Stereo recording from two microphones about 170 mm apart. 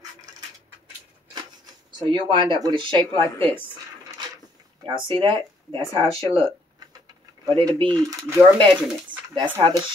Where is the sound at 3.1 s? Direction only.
10° left (ahead or behind).